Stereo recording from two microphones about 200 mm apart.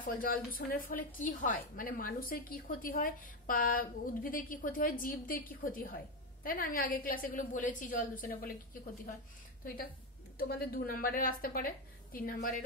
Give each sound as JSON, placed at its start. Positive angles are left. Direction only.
{"t": 0.0, "sound": "a woman's voice", "side_deg": 45}
{"t": 10.3, "sound": "a woman's voice", "side_deg": 50}